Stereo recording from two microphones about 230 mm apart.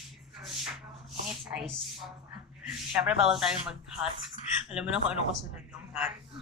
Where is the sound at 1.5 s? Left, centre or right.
Centre.